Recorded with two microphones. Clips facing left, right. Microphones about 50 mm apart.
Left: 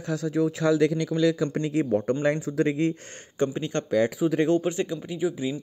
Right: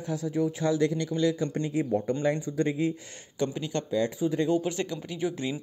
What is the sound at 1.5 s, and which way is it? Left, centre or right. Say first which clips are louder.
Speech: left 3 dB; left.